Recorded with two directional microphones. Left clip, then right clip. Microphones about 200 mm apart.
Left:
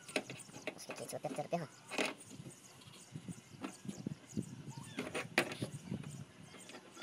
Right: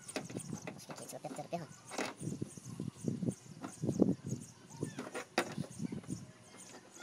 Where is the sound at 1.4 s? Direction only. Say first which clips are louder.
Left 3 dB; 20° left (ahead or behind).